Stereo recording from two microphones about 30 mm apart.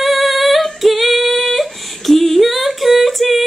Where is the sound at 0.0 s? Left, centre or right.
Centre.